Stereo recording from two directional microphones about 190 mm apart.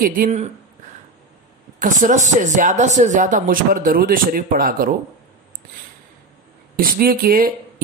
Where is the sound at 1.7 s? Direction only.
45° right (ahead or behind).